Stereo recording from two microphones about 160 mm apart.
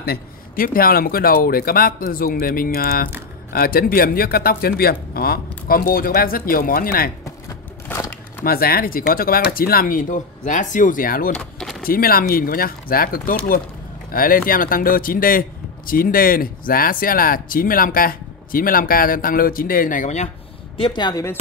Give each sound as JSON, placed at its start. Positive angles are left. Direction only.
{"t": 0.0, "sound": "a man's voice", "side_deg": 70}
{"t": 7.9, "sound": "a sound", "side_deg": 10}
{"t": 8.5, "sound": "a man's voice", "side_deg": 70}
{"t": 11.3, "sound": "vehicle", "side_deg": 0}
{"t": 11.8, "sound": "a man's voice", "side_deg": 65}
{"t": 20.7, "sound": "speech", "side_deg": 30}